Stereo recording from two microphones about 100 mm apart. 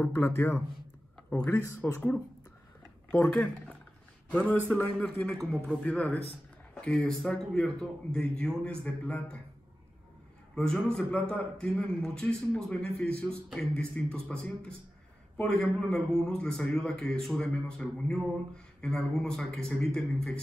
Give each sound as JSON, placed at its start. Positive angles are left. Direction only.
{"t": 0.0, "sound": "a man's voice", "side_deg": 25}
{"t": 1.6, "sound": "speech", "side_deg": 30}
{"t": 3.1, "sound": "a man's voice", "side_deg": 10}
{"t": 10.5, "sound": "a man's voice", "side_deg": 10}